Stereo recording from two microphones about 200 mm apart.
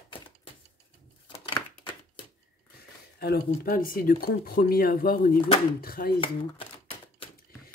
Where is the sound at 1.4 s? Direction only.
25° left (ahead or behind).